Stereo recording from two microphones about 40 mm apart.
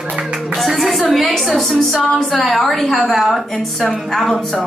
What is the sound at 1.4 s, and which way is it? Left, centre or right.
A woman's voice, centre.